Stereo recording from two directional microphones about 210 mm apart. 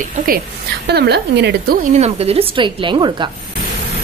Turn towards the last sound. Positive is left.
turn(degrees=-25)  # may be behind; listen again after turning